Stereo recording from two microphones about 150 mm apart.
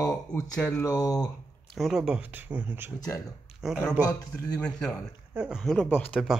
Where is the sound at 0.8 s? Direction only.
25° left (ahead or behind).